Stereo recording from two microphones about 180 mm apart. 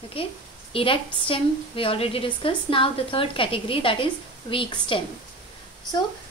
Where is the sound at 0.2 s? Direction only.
30° left (ahead or behind).